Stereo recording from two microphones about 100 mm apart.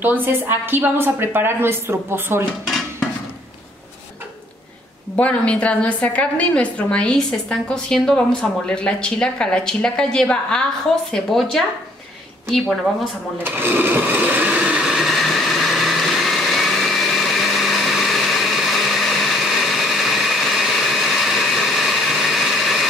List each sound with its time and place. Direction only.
0.0 s a woman's voice: 20° right (ahead or behind)
5.1 s a woman's voice: 10° left (ahead or behind)
13.4 s sewing machine: 20° right (ahead or behind); by 20.3 s centre (ahead or behind)
20.9 s a sound: centre (ahead or behind)